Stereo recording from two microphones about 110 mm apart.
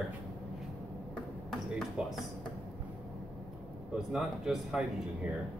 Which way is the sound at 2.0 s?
10° right (ahead or behind).